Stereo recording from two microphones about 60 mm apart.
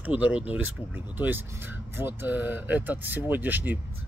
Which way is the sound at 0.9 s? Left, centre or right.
Right.